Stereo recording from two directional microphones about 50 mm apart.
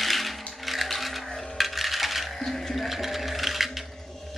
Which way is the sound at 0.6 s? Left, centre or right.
Centre.